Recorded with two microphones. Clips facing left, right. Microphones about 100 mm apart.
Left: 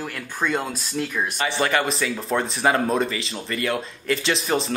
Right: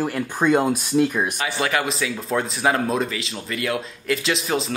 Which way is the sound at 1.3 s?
Centre (ahead or behind).